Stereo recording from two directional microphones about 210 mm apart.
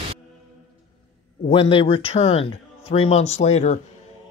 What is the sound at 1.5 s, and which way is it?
Speech, 25° left (ahead or behind).